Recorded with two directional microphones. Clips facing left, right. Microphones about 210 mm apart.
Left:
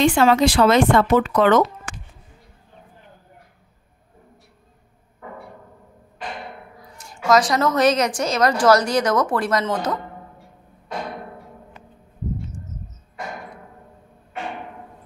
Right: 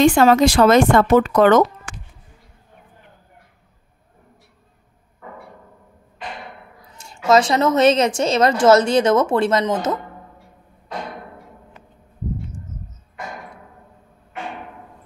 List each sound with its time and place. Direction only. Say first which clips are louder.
0.0 s speech: right 3 dB; 45° right (ahead or behind)
6.9 s a woman's voice: right 2 dB; 25° right (ahead or behind)